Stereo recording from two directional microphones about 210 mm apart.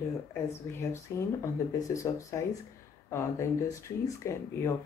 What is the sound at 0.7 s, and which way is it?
Speech, 15° left (ahead or behind).